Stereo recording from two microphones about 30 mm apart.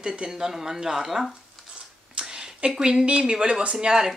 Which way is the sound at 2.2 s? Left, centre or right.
Right.